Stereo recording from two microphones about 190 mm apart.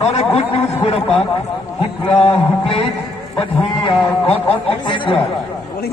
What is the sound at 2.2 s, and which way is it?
A man's voice, 30° left (ahead or behind).